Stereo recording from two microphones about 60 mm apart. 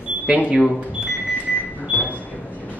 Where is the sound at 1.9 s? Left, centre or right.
Left.